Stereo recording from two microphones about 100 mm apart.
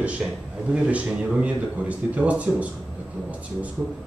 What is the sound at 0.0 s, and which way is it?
A man's voice, 10° right (ahead or behind).